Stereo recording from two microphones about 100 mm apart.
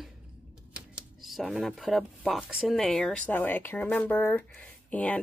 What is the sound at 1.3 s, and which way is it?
Speech, centre (ahead or behind).